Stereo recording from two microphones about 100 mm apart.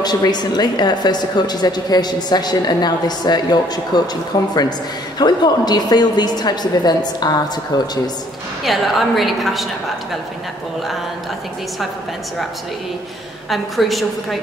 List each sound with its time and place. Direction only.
0.0 s a woman's voice: 45° left (ahead or behind)
8.6 s a woman's voice: centre (ahead or behind)
13.5 s a woman's voice: centre (ahead or behind)